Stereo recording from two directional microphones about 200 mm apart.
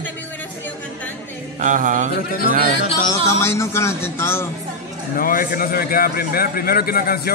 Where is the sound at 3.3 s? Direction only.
15° left (ahead or behind).